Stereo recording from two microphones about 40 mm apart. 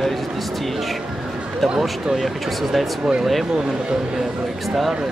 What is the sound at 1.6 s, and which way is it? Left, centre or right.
Speech, centre.